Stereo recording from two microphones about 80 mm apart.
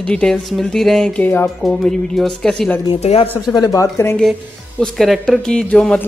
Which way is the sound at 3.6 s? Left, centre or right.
Left.